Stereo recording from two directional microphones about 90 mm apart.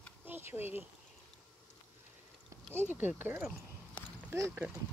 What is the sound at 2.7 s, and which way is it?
Speech, 20° right (ahead or behind).